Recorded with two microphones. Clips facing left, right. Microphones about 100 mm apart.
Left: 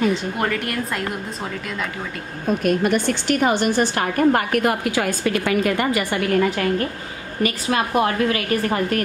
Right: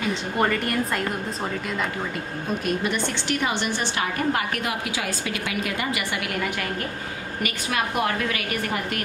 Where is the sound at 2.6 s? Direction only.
50° left (ahead or behind).